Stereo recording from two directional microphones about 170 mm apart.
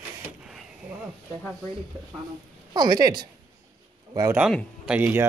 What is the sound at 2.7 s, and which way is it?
Speech, 25° right (ahead or behind).